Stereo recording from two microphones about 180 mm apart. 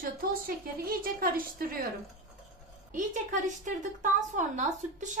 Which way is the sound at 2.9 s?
45° right (ahead or behind).